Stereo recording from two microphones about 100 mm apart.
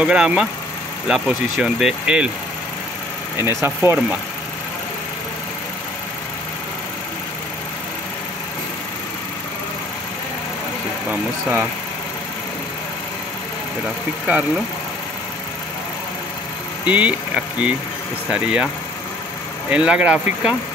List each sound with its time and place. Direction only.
0.0 s speech: 10° right (ahead or behind)
3.3 s speech: 25° right (ahead or behind)
16.8 s speech: 15° right (ahead or behind)
19.7 s speech: 10° right (ahead or behind)